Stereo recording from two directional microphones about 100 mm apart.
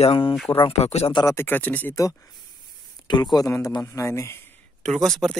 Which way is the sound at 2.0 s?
35° left (ahead or behind).